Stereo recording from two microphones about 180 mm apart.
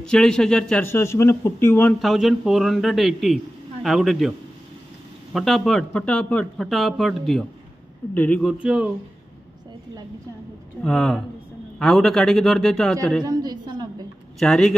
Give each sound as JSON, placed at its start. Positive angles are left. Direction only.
{"t": 0.0, "sound": "a man's voice", "side_deg": 5}
{"t": 5.3, "sound": "a man's voice", "side_deg": 0}
{"t": 8.5, "sound": "a man's voice", "side_deg": -5}
{"t": 10.8, "sound": "a man's voice", "side_deg": 5}
{"t": 13.2, "sound": "a sound", "side_deg": -20}
{"t": 14.4, "sound": "a man's voice", "side_deg": 5}